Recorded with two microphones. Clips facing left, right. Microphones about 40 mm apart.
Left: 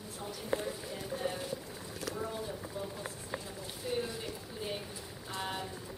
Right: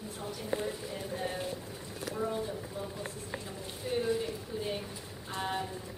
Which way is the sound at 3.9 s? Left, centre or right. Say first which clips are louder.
Right 5 dB; centre.